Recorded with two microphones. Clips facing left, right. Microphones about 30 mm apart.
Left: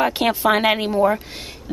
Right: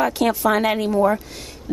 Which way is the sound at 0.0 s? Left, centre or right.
Left.